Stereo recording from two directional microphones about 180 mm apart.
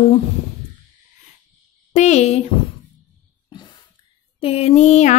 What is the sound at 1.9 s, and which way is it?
Speech, 40° left (ahead or behind).